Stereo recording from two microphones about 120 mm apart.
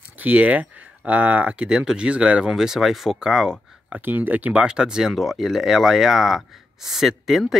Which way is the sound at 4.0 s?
15° right (ahead or behind).